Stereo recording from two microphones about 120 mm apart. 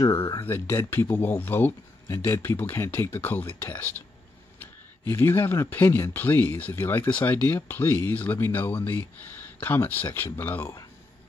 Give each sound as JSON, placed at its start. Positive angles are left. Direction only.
{"t": 0.4, "sound": "speech", "side_deg": 20}
{"t": 5.0, "sound": "speech", "side_deg": 20}